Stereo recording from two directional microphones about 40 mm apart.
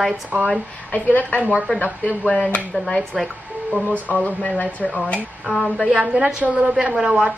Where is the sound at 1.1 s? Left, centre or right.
Left.